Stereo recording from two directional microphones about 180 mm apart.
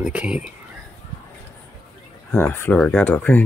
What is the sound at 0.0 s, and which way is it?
Speech, 5° right (ahead or behind).